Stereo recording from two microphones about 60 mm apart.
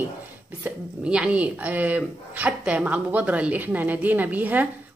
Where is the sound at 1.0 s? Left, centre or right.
Centre.